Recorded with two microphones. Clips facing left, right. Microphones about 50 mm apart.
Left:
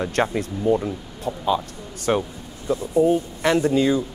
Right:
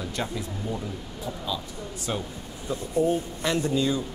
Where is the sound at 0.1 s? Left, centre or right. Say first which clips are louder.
Left 9 dB; left.